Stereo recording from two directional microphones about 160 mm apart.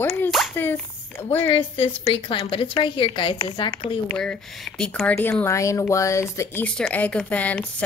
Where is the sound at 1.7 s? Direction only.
35° left (ahead or behind).